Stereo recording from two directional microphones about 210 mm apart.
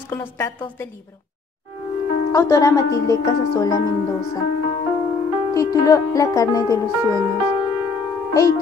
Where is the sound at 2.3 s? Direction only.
15° left (ahead or behind).